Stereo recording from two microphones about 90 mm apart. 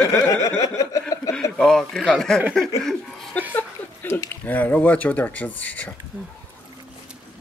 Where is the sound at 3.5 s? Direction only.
25° left (ahead or behind).